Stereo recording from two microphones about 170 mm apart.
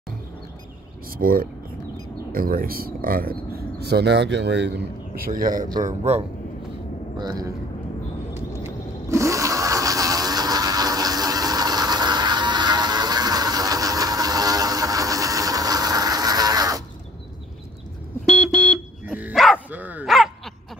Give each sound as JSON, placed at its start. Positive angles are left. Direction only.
{"t": 1.1, "sound": "speech", "side_deg": -55}
{"t": 5.8, "sound": "a man's voice", "side_deg": -40}
{"t": 7.2, "sound": "speech", "side_deg": -20}
{"t": 8.6, "sound": "toilet flush", "side_deg": -15}
{"t": 18.2, "sound": "smoke detector", "side_deg": 5}
{"t": 19.1, "sound": "dog", "side_deg": -5}